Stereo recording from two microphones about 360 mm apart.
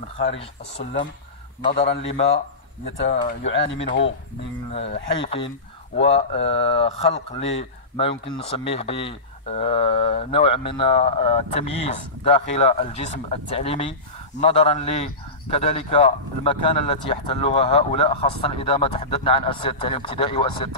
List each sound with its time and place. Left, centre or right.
1.7 s speech: left
5.2 s speech: centre